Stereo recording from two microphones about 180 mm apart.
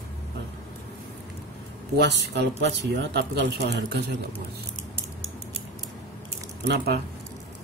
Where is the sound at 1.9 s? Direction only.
70° right (ahead or behind).